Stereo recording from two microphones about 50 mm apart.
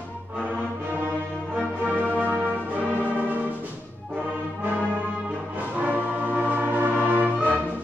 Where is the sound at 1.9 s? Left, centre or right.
Right.